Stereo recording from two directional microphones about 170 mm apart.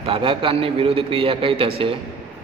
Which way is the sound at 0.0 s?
30° right (ahead or behind).